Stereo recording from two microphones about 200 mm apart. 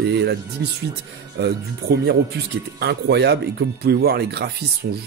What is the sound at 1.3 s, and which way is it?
Speech, 55° right (ahead or behind).